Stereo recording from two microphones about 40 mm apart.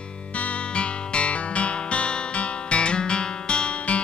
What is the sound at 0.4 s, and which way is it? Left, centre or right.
Music, left.